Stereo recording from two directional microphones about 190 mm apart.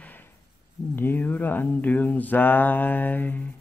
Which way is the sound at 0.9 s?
10° left (ahead or behind).